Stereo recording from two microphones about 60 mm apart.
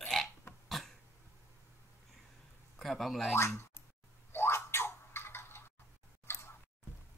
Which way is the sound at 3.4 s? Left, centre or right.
Left.